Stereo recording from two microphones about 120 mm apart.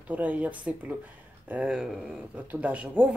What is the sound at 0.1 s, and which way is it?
Speech, 10° right (ahead or behind).